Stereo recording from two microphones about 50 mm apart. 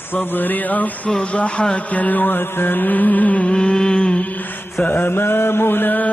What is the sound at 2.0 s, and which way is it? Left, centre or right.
Mantra, left.